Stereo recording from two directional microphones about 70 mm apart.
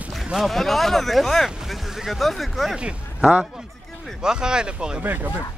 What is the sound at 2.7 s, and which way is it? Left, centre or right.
Speech, centre.